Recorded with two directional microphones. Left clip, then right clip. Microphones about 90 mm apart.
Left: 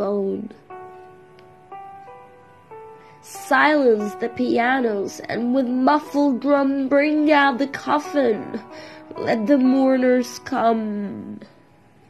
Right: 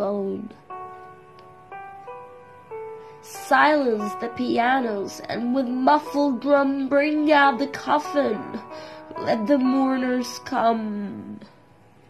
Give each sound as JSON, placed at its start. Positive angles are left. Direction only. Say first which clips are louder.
{"t": 0.0, "sound": "music", "louder": "left 3 dB", "side_deg": 25}
{"t": 3.3, "sound": "a woman's voice", "louder": "left 1 dB", "side_deg": 25}
{"t": 7.3, "sound": "a woman's voice", "louder": "even", "side_deg": 20}
{"t": 10.8, "sound": "a woman's voice", "louder": "left 3 dB", "side_deg": 5}